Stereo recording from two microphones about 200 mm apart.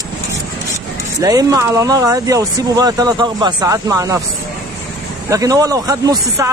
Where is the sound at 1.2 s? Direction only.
20° right (ahead or behind).